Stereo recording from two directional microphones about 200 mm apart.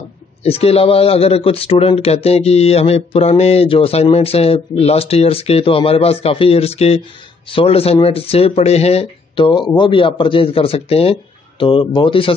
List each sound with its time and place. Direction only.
0.4 s speech: 30° left (ahead or behind)